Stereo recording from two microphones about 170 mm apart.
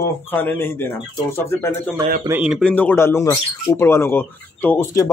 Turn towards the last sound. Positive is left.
turn(degrees=10)  # may be behind; listen again after turning